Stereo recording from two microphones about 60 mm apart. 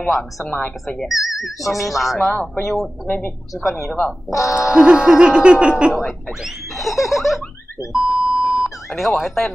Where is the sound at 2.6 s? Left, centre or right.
Centre.